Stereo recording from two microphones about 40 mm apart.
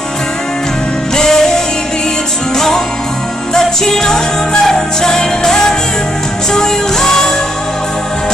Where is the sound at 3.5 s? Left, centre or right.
Centre.